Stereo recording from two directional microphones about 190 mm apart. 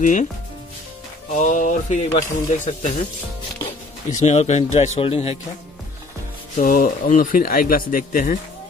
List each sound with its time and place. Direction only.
0.0 s speech: 40° left (ahead or behind)
1.3 s speech: 40° left (ahead or behind)
6.6 s speech: 45° left (ahead or behind)